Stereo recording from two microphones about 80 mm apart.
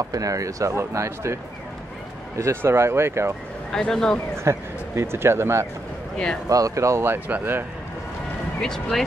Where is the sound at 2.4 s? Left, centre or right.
Right.